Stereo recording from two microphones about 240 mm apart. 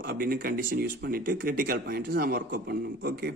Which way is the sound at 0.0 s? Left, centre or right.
Right.